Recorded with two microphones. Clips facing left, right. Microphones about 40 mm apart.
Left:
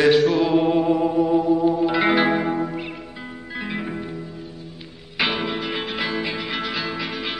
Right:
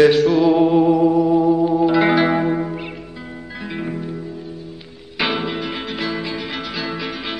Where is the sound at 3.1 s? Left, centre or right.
Centre.